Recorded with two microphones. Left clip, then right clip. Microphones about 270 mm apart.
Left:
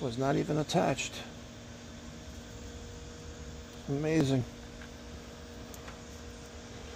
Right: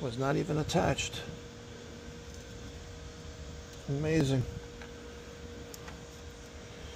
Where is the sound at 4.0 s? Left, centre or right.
Centre.